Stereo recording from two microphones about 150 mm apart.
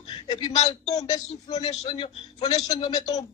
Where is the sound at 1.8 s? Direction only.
40° left (ahead or behind).